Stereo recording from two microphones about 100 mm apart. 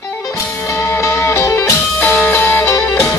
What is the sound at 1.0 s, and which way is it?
Music, 30° left (ahead or behind).